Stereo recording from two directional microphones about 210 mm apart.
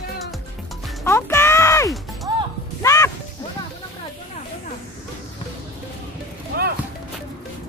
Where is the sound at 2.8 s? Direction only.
15° left (ahead or behind).